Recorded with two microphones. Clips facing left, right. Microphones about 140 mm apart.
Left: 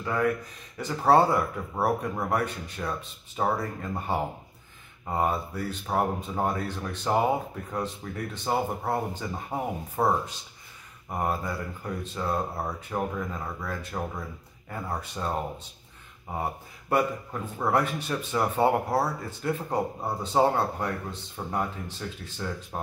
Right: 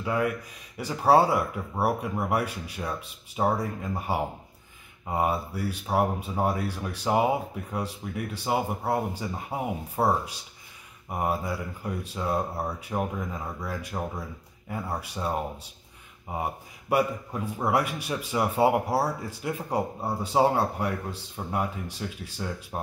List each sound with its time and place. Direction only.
0.0 s speech: 10° right (ahead or behind)